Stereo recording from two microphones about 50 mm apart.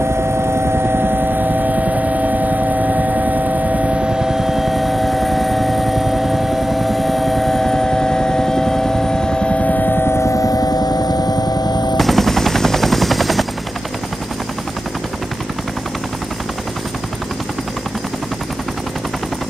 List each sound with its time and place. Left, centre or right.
0.1 s vehicle: right; by 10.0 s left
10.0 s music: left
12.0 s helicopter: centre